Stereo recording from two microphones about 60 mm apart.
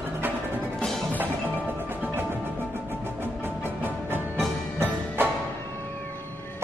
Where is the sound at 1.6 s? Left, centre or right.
Right.